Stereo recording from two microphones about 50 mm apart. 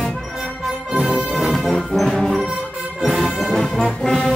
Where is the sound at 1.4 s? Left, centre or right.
Centre.